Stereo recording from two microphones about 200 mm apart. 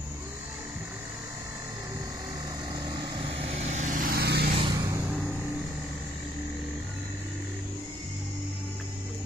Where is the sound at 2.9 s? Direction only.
25° right (ahead or behind); by 4.5 s 50° right (ahead or behind).